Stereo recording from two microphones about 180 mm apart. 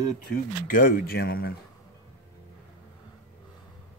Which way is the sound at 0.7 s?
50° left (ahead or behind).